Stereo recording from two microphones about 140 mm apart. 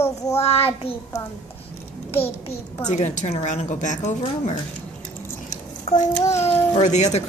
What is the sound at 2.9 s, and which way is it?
A woman's voice, 60° left (ahead or behind).